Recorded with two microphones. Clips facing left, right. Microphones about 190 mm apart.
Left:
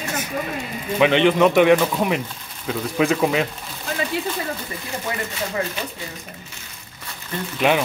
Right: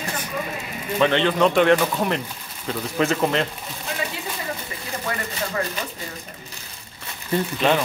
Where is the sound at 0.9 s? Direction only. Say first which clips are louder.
Left 3 dB; 15° left (ahead or behind).